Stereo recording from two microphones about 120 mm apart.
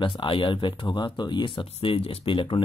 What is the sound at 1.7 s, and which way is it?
Speech, 50° left (ahead or behind).